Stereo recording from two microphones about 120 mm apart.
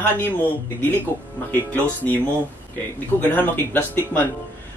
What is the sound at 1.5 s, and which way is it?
Speech, 15° left (ahead or behind).